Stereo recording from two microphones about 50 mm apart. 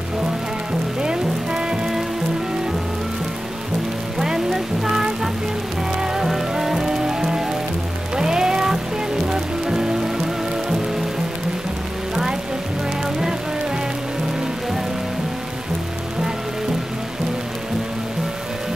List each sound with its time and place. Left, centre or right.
1.0 s music: centre
4.2 s music: centre
9.3 s rain on surface: centre